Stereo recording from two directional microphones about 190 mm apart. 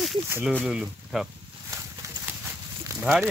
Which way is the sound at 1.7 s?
15° right (ahead or behind).